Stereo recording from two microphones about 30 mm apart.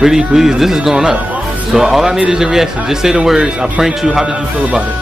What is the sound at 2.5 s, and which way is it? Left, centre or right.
Speech, centre.